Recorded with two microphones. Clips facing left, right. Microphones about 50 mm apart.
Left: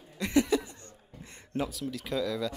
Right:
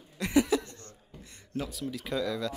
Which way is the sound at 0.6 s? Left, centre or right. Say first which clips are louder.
Even; centre.